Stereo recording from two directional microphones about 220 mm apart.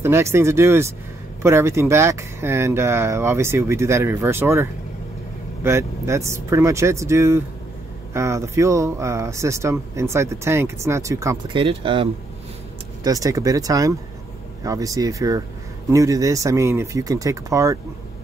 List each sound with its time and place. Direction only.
0.0 s speech: 10° right (ahead or behind)